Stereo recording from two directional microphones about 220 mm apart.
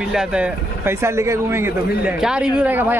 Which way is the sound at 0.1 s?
5° right (ahead or behind).